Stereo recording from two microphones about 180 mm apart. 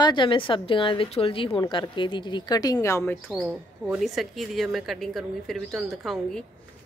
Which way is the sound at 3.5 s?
5° right (ahead or behind).